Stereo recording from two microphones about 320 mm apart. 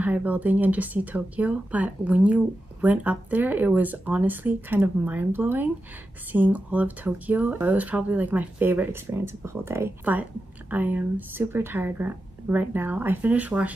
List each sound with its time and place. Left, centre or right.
0.0 s speech: centre